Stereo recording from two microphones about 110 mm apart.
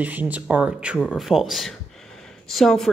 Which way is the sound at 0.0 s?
15° right (ahead or behind).